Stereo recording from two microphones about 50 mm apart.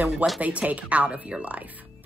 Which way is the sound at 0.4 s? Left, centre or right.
Right.